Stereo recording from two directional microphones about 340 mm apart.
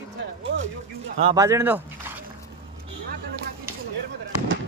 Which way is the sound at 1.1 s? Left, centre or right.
Centre.